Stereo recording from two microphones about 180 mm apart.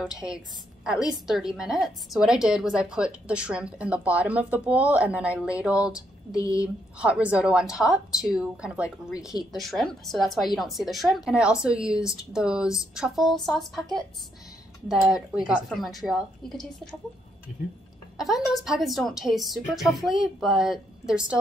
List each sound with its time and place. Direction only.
0.0 s a woman's voice: 5° right (ahead or behind)
14.9 s a woman's voice: 5° right (ahead or behind)
17.6 s speech: 55° left (ahead or behind)
18.1 s a woman's voice: centre (ahead or behind)